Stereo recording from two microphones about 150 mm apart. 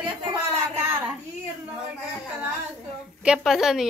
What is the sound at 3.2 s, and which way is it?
Speech, 5° right (ahead or behind).